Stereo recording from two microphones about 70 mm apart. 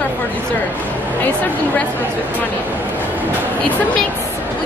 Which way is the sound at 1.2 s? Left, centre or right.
Left.